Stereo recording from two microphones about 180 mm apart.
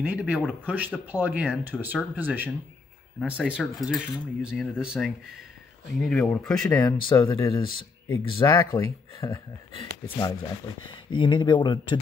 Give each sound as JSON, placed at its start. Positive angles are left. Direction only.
{"t": 0.0, "sound": "speech", "side_deg": -5}